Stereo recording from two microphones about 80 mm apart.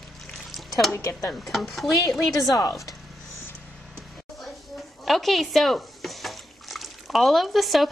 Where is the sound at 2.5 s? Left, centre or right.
Left.